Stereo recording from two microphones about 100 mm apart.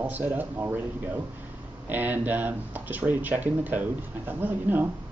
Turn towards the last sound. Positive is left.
turn(degrees=-20)  # may be behind; listen again after turning